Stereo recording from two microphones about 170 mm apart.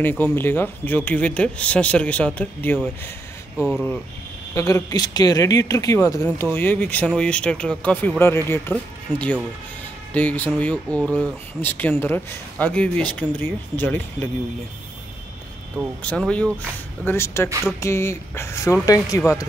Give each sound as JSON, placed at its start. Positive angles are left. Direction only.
{"t": 0.0, "sound": "speech", "side_deg": 10}
{"t": 3.5, "sound": "speech", "side_deg": 0}
{"t": 4.6, "sound": "speech", "side_deg": 20}
{"t": 16.0, "sound": "speech", "side_deg": 5}